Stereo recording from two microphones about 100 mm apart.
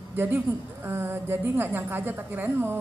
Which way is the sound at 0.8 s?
25° right (ahead or behind).